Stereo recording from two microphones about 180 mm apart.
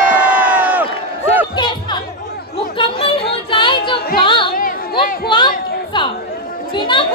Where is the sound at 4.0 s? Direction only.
55° left (ahead or behind).